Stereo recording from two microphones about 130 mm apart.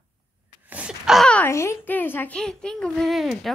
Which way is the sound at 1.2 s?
10° left (ahead or behind).